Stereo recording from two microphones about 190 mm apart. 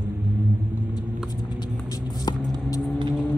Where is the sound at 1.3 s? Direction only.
20° left (ahead or behind).